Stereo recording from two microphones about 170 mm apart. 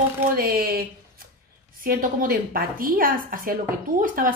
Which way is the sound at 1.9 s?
55° right (ahead or behind).